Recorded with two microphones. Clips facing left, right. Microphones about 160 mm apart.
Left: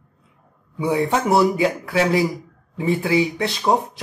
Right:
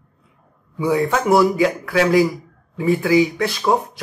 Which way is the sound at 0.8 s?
20° left (ahead or behind).